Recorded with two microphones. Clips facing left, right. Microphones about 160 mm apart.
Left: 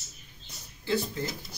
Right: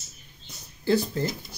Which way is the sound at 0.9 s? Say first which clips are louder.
Right 6 dB; 40° right (ahead or behind).